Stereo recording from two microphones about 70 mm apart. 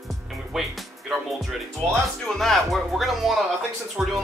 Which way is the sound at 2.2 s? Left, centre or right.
Centre.